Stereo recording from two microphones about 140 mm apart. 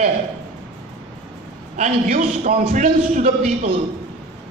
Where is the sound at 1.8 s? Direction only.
70° right (ahead or behind).